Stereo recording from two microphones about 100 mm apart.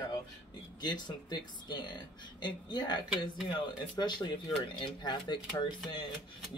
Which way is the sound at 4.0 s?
45° left (ahead or behind).